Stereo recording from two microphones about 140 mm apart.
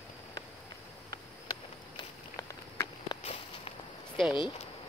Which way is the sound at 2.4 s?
20° left (ahead or behind).